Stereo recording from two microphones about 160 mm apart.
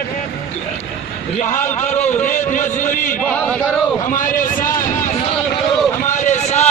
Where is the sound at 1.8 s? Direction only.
45° left (ahead or behind).